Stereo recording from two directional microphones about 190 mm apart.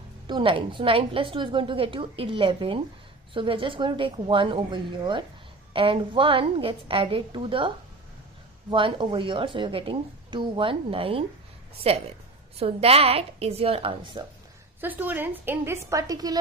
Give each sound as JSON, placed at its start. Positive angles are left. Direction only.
{"t": 0.3, "sound": "a woman's voice", "side_deg": -25}
{"t": 14.8, "sound": "a woman's voice", "side_deg": -10}